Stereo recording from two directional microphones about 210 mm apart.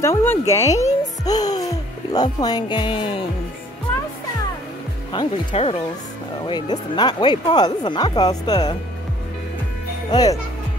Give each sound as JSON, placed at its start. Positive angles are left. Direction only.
{"t": 0.0, "sound": "speech", "side_deg": 10}
{"t": 1.2, "sound": "music", "side_deg": 20}
{"t": 5.1, "sound": "speech", "side_deg": 20}